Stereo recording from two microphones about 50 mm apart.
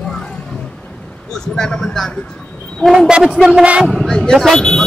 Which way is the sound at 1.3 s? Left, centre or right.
Centre.